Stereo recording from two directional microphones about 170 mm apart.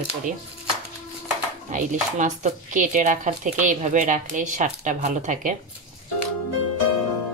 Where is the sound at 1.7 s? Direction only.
45° right (ahead or behind).